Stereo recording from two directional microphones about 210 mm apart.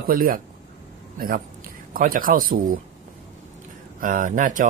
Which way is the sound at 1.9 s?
40° right (ahead or behind).